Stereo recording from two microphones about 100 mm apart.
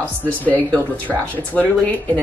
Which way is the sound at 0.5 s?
15° left (ahead or behind).